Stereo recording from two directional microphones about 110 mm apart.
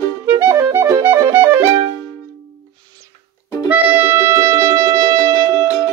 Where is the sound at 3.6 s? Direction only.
20° right (ahead or behind); by 5.7 s 35° right (ahead or behind).